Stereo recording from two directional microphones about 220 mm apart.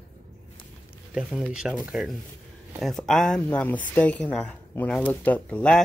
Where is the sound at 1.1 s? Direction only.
5° right (ahead or behind).